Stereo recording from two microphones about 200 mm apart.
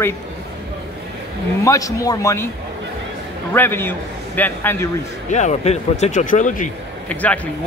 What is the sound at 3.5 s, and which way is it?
Speech, 10° left (ahead or behind).